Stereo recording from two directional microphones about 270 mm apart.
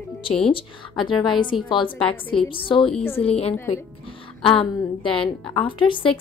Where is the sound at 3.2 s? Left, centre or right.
Left.